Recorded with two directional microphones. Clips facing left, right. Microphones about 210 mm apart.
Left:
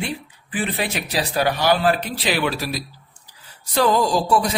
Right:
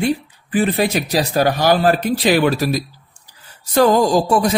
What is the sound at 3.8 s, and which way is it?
Speech, 45° right (ahead or behind).